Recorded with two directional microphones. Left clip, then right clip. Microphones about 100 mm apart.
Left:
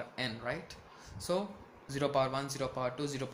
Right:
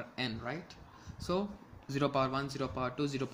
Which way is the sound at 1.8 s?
65° right (ahead or behind).